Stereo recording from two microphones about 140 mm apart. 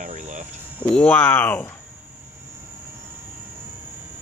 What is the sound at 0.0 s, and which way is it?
Cricket, 60° right (ahead or behind).